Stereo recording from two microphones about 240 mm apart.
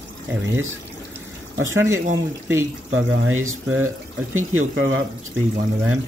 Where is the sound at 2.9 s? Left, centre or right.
Right.